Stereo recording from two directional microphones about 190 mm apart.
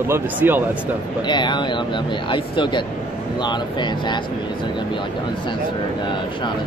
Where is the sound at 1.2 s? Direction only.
25° left (ahead or behind).